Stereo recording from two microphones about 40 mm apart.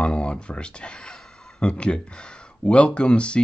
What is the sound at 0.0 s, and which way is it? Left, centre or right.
Speech, left.